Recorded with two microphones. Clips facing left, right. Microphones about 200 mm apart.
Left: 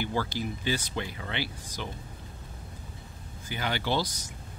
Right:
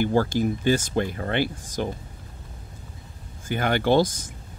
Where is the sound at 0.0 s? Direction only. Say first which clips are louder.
Right 9 dB; 45° right (ahead or behind).